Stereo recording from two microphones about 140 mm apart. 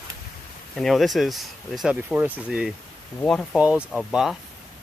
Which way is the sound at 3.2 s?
5° left (ahead or behind).